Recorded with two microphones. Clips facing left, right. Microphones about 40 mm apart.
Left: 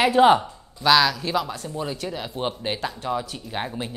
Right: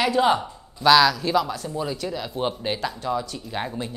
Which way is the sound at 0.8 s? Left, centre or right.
Centre.